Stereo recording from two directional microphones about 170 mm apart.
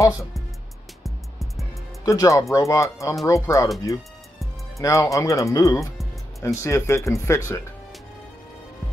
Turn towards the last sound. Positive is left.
turn(degrees=15)  # may be behind; listen again after turning